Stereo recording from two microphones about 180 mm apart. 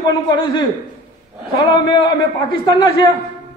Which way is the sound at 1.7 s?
25° left (ahead or behind).